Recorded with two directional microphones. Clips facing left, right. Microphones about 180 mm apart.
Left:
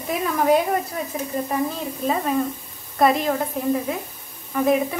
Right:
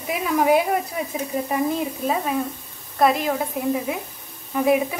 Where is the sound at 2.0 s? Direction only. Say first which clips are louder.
Left 5 dB; centre (ahead or behind).